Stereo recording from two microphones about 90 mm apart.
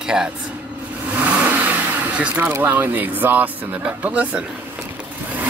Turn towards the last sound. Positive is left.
turn(degrees=-15)  # may be behind; listen again after turning